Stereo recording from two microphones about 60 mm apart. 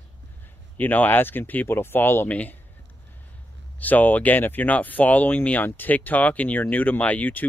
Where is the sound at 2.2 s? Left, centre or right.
Left.